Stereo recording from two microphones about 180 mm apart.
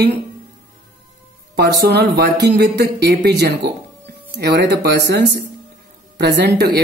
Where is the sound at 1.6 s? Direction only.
65° right (ahead or behind).